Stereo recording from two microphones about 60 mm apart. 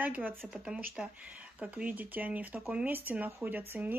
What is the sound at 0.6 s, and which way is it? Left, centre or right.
Speech, centre.